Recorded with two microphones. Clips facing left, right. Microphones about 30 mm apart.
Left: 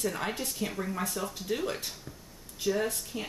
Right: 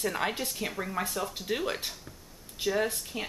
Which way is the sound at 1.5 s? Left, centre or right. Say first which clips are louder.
Even; right.